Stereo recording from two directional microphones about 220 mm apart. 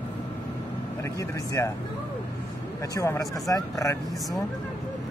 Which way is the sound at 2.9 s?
15° left (ahead or behind).